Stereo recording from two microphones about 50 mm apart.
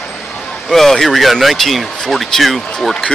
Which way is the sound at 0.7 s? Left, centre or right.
Centre.